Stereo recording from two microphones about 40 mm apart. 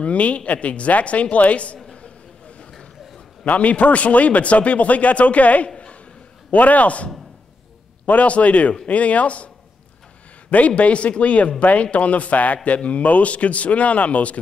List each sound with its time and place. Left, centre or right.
0.0 s a man's voice: left
1.9 s a sound: left
3.4 s a man's voice: left
10.8 s a man's voice: left